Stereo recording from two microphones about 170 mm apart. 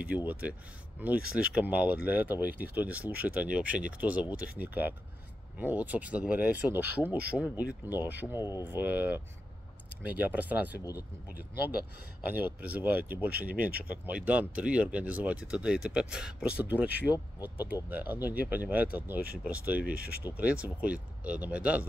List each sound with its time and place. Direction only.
0.0 s speech: 10° right (ahead or behind)
8.4 s speech: 20° left (ahead or behind)
8.6 s speech: 10° right (ahead or behind)
12.4 s speech: 10° right (ahead or behind)
19.9 s speech: 60° right (ahead or behind)
20.2 s speech: 10° right (ahead or behind)